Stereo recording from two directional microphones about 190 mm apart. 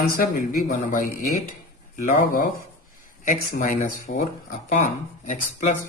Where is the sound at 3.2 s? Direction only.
45° left (ahead or behind).